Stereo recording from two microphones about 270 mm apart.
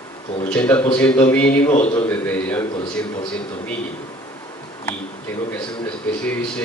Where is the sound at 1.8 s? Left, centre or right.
Left.